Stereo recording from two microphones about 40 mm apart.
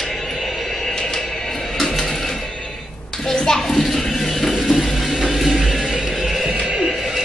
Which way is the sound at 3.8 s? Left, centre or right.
Centre.